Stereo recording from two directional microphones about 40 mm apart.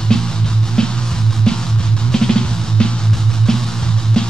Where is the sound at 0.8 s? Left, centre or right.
Centre.